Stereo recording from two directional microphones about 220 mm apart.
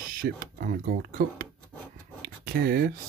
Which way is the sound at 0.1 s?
40° right (ahead or behind).